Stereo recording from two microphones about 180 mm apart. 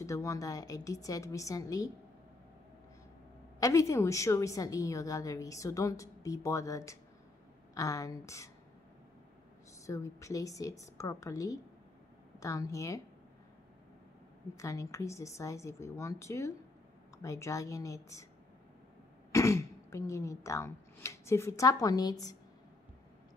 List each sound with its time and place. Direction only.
0.0 s a woman's voice: 15° left (ahead or behind)
3.5 s a woman's voice: 20° left (ahead or behind)
9.8 s a woman's voice: 15° left (ahead or behind)
14.5 s a woman's voice: 15° left (ahead or behind)
19.3 s speech: 15° left (ahead or behind)